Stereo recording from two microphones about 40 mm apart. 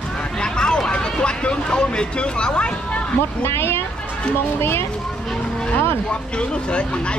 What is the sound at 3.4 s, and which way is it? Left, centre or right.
Speech, left.